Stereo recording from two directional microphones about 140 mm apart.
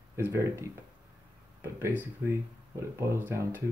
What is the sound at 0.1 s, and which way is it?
Speech, 20° right (ahead or behind).